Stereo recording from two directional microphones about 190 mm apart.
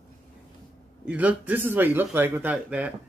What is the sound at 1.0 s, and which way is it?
Speech, 5° right (ahead or behind).